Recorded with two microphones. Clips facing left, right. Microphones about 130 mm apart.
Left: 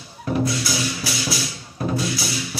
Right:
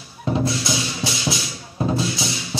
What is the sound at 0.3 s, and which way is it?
Music, 25° right (ahead or behind).